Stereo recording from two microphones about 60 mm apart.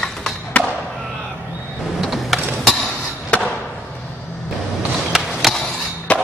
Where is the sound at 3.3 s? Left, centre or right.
Left.